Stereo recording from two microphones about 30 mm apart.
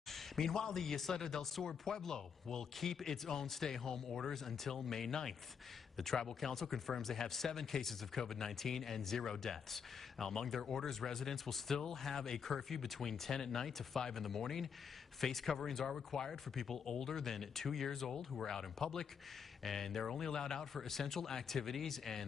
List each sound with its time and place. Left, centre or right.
0.1 s a sound: centre
0.7 s speech: centre
20.2 s a man's voice: centre